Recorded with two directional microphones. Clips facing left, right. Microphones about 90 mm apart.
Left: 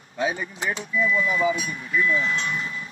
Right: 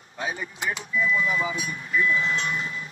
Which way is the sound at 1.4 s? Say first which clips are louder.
Left 6 dB; 30° right (ahead or behind).